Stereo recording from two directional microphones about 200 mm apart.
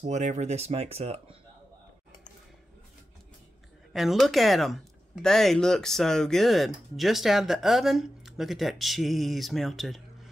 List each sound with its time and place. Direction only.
0.0 s speech: 35° right (ahead or behind)
3.9 s speech: centre (ahead or behind)